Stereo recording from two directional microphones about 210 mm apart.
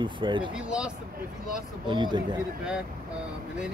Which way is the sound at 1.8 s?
20° right (ahead or behind).